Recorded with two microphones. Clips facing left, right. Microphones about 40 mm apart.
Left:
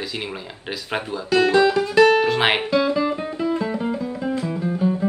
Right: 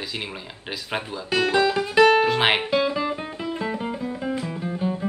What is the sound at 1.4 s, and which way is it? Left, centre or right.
Music, centre.